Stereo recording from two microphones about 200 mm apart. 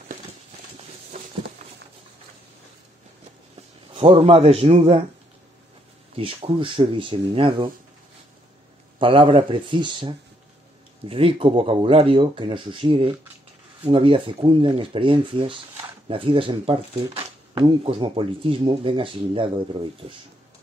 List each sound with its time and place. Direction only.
3.9 s speech: 30° right (ahead or behind)
6.1 s speech: 25° right (ahead or behind)
9.0 s speech: 25° right (ahead or behind)